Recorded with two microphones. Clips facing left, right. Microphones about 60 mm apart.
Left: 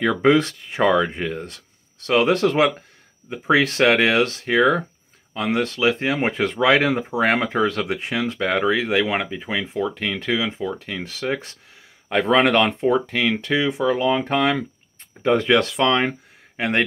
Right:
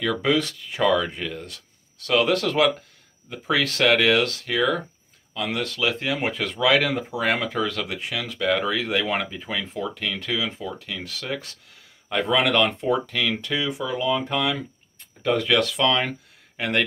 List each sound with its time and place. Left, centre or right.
0.0 s speech: left